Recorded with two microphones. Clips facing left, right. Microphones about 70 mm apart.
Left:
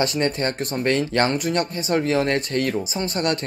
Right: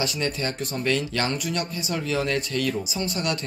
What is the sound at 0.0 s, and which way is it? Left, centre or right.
Speech, left.